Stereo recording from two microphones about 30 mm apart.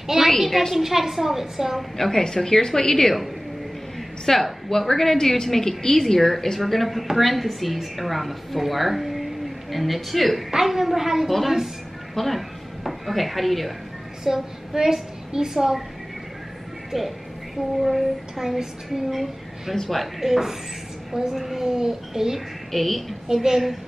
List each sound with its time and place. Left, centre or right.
0.0 s a woman's voice: centre
0.3 s a woman's voice: centre
0.7 s a woman's voice: centre
2.0 s a woman's voice: centre
4.3 s a woman's voice: centre
10.5 s a woman's voice: centre
11.2 s a woman's voice: centre
14.2 s a woman's voice: centre
16.9 s a woman's voice: centre
19.7 s a woman's voice: centre
20.2 s a woman's voice: centre
22.7 s a woman's voice: centre
23.2 s a woman's voice: centre